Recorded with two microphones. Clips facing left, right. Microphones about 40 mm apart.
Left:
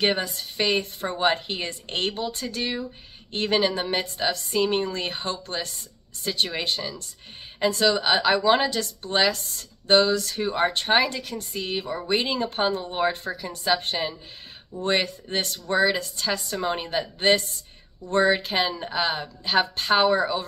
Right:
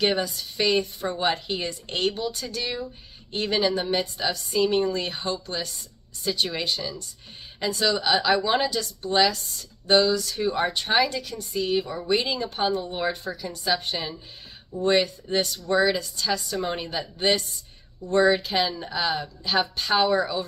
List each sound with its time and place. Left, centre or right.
0.0 s a woman's voice: left
10.3 s a woman's voice: left
13.1 s a woman's voice: left
16.5 s a woman's voice: left